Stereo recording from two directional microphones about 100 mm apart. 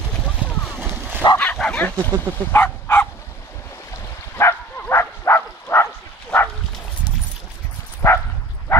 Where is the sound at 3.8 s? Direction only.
25° left (ahead or behind).